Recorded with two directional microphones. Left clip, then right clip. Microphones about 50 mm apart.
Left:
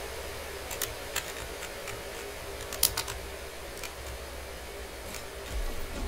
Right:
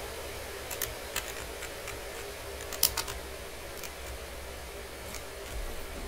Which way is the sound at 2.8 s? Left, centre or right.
Right.